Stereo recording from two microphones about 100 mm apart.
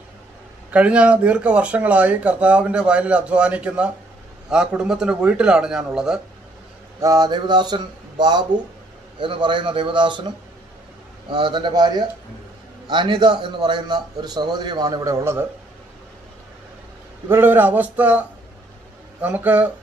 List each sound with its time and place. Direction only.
0.7 s speech: 10° right (ahead or behind)
7.0 s a man's voice: 40° right (ahead or behind)
17.3 s speech: 20° right (ahead or behind)
19.2 s speech: 15° right (ahead or behind)